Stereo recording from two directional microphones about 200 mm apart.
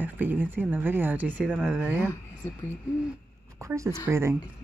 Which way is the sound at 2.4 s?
10° left (ahead or behind).